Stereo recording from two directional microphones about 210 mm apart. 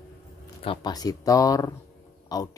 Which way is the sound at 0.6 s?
20° left (ahead or behind).